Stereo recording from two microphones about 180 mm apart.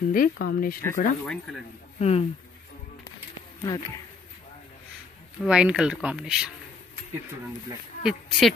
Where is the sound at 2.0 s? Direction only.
35° left (ahead or behind).